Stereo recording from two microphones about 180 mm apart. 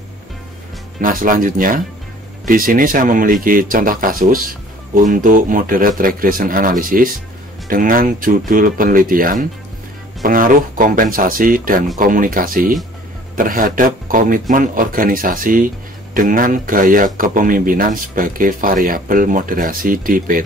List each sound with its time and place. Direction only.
1.0 s speech: 50° right (ahead or behind)